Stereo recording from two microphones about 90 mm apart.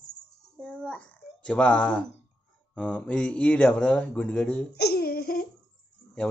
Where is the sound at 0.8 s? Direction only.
15° left (ahead or behind).